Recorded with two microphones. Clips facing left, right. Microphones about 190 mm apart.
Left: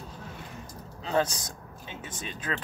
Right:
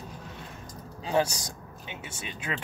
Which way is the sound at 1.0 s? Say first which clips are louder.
Right 1 dB; 10° right (ahead or behind).